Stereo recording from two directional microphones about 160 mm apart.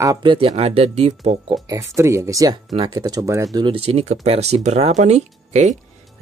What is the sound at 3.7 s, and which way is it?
Speech, 40° right (ahead or behind).